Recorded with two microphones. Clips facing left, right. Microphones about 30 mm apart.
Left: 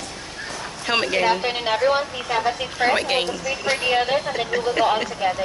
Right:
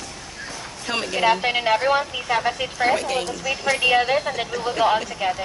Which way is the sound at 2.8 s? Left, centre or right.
Left.